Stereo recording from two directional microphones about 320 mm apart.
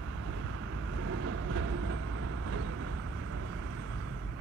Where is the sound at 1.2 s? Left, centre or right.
Right.